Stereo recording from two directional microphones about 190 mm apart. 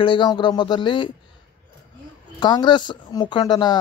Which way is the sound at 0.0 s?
25° left (ahead or behind).